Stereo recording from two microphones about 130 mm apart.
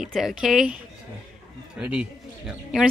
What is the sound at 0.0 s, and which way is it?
Speech, 5° right (ahead or behind).